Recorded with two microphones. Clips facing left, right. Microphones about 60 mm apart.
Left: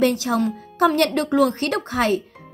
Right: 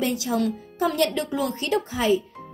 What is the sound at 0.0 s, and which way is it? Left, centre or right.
Speech, left.